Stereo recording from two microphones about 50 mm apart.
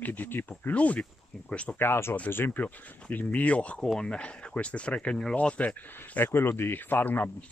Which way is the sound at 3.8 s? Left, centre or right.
Centre.